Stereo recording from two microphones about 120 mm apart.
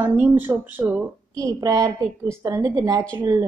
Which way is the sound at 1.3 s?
30° right (ahead or behind).